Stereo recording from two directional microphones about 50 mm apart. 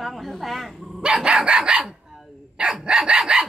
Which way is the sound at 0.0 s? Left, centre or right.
Centre.